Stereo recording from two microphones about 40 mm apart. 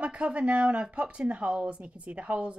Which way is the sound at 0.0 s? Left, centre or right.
Right.